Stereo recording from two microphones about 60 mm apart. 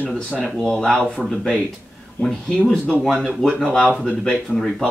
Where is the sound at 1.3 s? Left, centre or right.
Centre.